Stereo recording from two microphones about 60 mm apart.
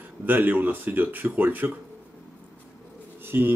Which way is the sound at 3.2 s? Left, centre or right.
Right.